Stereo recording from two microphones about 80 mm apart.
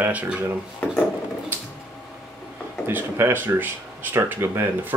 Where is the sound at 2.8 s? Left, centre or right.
Right.